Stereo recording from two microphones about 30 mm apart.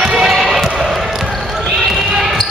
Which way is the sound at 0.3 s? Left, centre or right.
Centre.